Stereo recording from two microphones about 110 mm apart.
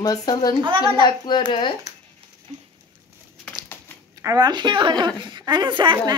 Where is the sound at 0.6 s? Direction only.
45° right (ahead or behind).